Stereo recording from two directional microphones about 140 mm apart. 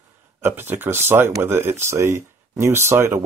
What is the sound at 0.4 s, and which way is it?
Speech, 15° right (ahead or behind).